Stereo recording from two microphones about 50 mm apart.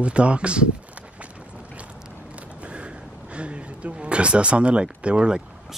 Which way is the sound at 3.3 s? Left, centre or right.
Right.